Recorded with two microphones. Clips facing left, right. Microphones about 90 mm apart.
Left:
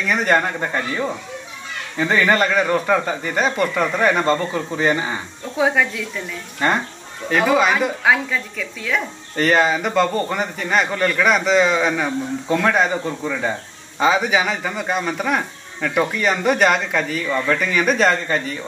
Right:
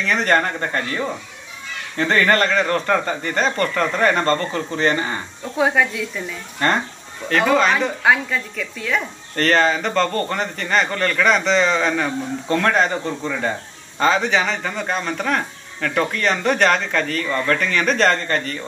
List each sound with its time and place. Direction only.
0.0 s speech: 5° left (ahead or behind)